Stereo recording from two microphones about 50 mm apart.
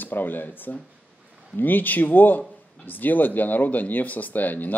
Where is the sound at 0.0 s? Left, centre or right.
Left.